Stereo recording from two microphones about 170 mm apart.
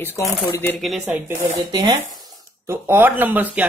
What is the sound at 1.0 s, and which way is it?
Speech, 10° right (ahead or behind).